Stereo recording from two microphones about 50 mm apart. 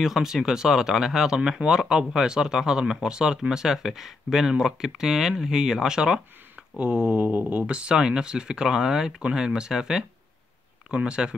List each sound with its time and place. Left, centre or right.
0.0 s speech: centre; by 7.6 s right
7.6 s speech: right
10.9 s speech: right